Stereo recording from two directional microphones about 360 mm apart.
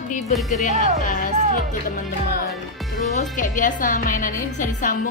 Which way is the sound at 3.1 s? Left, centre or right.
Left.